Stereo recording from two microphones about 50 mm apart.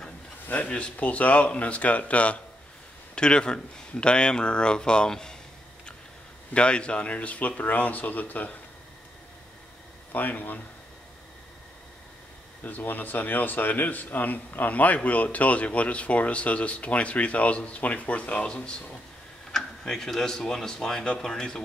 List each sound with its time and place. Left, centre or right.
0.7 s speech: centre
0.9 s speech: left; by 5.4 s centre
6.5 s speech: left
10.1 s speech: left
12.6 s speech: left; by 21.6 s centre